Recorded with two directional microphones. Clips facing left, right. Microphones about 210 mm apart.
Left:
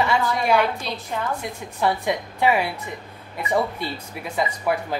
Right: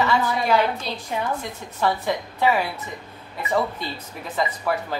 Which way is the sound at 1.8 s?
15° left (ahead or behind).